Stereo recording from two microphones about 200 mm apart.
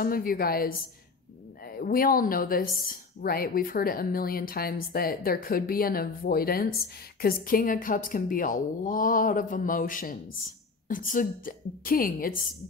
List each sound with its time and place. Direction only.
0.0 s speech: 45° left (ahead or behind)